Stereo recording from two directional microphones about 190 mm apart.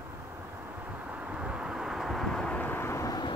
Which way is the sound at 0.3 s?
10° right (ahead or behind).